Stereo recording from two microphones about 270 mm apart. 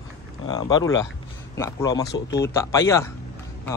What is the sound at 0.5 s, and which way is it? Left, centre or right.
A man's voice, centre.